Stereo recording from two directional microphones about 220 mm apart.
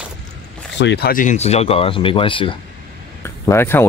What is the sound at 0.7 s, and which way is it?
Speech, 50° left (ahead or behind).